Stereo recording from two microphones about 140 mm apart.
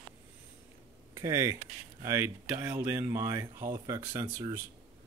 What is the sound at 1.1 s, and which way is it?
Speech, 20° right (ahead or behind).